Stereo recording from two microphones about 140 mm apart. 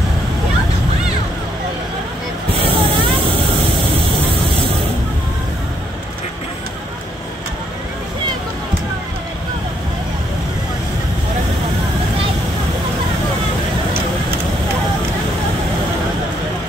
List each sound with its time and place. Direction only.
2.5 s vehicle: 40° right (ahead or behind)